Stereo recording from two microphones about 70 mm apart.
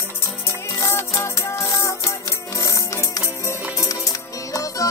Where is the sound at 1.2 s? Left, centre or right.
Left.